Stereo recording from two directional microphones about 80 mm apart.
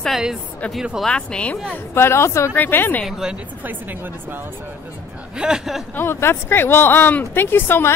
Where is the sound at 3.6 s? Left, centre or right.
Right.